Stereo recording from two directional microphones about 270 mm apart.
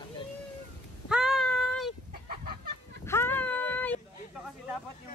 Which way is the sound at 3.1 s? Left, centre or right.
Centre.